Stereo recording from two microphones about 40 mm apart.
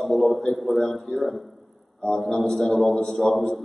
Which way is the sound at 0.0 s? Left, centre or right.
Centre.